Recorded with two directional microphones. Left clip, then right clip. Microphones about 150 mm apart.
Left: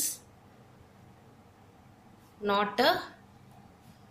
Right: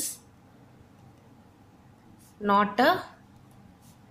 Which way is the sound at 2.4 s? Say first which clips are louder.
Right 4 dB; 35° right (ahead or behind).